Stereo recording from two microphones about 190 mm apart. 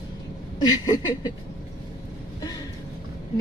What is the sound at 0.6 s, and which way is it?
Speech, 20° left (ahead or behind).